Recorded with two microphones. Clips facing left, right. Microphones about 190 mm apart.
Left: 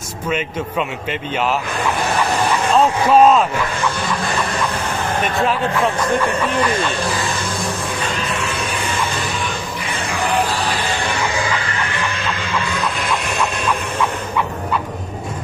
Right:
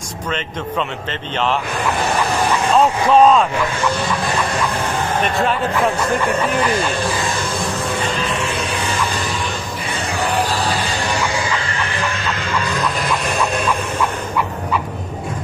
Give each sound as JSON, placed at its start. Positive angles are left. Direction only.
{"t": 2.7, "sound": "speech", "side_deg": 5}